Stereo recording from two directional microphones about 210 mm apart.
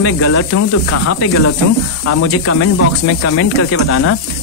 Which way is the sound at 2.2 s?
90° left.